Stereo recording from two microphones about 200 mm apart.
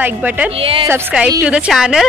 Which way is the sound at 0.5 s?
25° right (ahead or behind).